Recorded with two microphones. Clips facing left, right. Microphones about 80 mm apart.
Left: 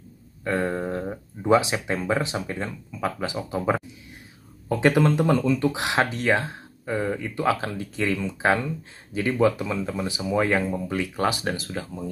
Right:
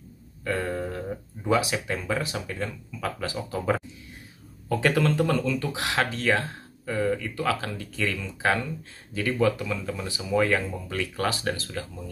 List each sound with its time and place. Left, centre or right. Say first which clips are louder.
0.4 s speech: left 3 dB; left